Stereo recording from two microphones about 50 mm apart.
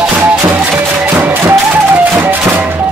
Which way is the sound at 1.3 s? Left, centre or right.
Right.